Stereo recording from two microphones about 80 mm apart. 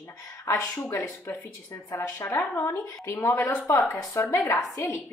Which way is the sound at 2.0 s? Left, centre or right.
Left.